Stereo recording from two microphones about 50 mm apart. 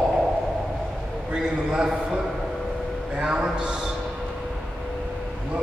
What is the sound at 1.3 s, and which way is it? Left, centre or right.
Speech, centre.